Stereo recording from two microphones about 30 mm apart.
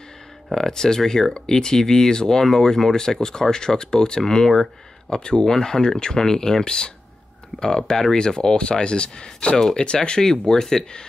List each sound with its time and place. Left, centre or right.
0.6 s speech: centre